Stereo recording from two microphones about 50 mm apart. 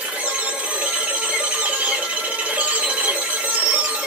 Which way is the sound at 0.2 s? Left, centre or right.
Right.